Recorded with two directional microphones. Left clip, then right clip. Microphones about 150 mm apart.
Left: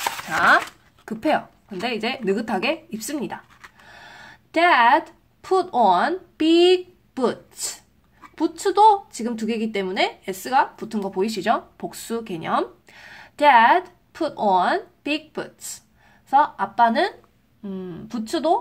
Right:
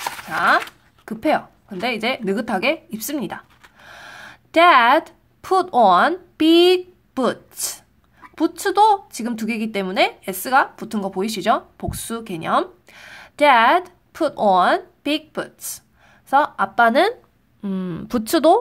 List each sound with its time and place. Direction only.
0.0 s a sound: centre (ahead or behind)
1.8 s a woman's voice: 25° right (ahead or behind)
17.6 s speech: 55° right (ahead or behind)